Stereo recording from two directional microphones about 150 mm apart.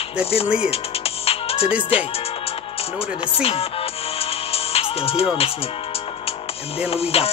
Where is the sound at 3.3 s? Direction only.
40° left (ahead or behind).